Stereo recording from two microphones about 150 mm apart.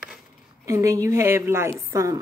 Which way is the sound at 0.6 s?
20° right (ahead or behind).